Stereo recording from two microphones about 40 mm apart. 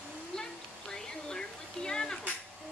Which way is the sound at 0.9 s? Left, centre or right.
Centre.